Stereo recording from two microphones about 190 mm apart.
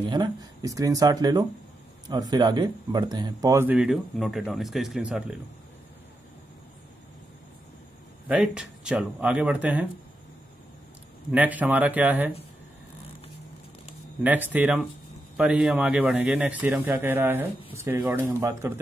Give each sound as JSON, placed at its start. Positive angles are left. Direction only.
{"t": 0.1, "sound": "speech", "side_deg": -20}
{"t": 8.3, "sound": "speech", "side_deg": -5}
{"t": 11.3, "sound": "speech", "side_deg": -10}
{"t": 14.2, "sound": "speech", "side_deg": -10}